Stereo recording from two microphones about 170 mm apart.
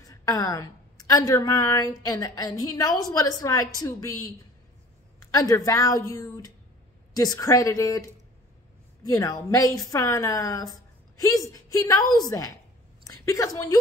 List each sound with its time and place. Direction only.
0.0 s a woman's voice: 20° left (ahead or behind)
9.0 s a woman's voice: 20° left (ahead or behind)
13.0 s a sound: 20° left (ahead or behind)